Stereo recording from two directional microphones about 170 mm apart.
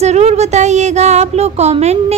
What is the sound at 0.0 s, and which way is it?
A woman's voice, 40° right (ahead or behind).